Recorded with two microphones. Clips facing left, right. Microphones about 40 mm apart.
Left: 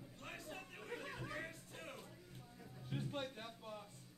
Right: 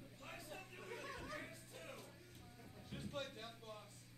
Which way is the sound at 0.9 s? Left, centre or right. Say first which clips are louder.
Left 2 dB; left.